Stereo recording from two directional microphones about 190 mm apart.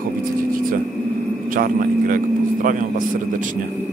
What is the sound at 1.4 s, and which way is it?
A man's voice, 45° right (ahead or behind).